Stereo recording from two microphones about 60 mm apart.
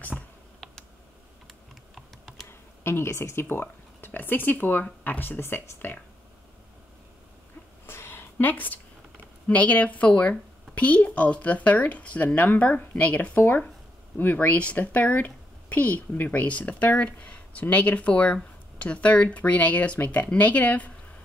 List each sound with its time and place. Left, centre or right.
2.8 s a woman's voice: left
7.8 s a sound: left
9.5 s a woman's voice: left